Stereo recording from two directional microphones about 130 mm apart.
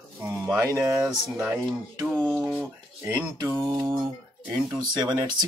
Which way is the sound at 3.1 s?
20° right (ahead or behind).